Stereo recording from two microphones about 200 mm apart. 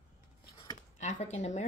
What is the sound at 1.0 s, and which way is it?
Speech, 35° left (ahead or behind).